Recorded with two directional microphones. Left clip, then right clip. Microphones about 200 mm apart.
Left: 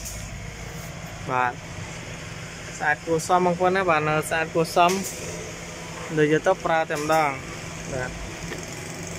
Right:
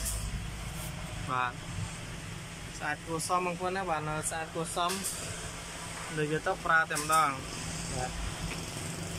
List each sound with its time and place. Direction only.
1.3 s speech: 35° left (ahead or behind)
2.8 s speech: 40° left (ahead or behind)
6.1 s speech: 25° left (ahead or behind)